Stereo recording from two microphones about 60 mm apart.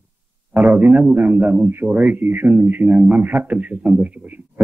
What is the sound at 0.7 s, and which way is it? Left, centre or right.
Speech, centre.